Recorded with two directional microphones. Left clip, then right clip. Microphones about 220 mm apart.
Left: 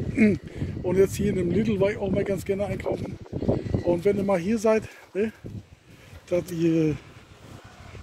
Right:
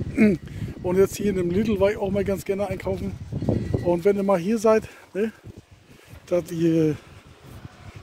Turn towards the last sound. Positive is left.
turn(degrees=-30)  # may be behind; listen again after turning